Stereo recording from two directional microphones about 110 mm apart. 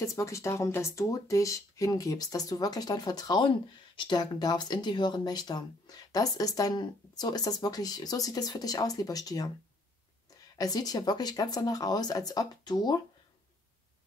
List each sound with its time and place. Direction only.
0.0 s speech: 30° left (ahead or behind)
10.6 s speech: 35° left (ahead or behind)